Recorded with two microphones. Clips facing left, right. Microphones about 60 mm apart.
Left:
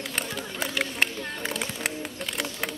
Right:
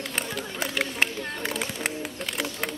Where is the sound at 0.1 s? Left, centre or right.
Centre.